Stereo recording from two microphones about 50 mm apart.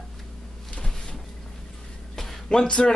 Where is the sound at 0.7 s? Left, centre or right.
Centre.